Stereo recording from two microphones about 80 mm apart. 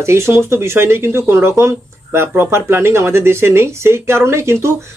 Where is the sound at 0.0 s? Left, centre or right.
Right.